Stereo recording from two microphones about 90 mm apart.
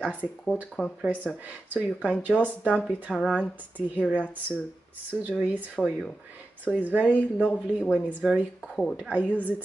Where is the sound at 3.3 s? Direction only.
15° right (ahead or behind).